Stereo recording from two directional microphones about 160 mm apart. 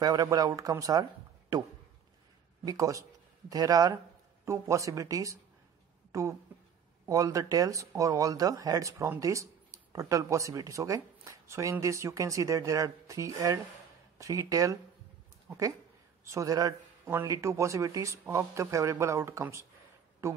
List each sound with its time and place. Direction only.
0.0 s a man's voice: 25° right (ahead or behind)
7.1 s speech: 20° right (ahead or behind)
16.3 s a man's voice: 20° right (ahead or behind)